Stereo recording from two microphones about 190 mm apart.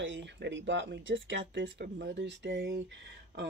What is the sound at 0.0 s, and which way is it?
Speech, 70° right (ahead or behind).